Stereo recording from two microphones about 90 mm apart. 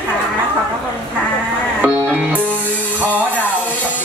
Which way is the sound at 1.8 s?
20° right (ahead or behind).